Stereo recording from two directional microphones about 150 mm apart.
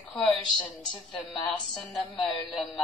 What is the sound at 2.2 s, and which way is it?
Speech, centre (ahead or behind).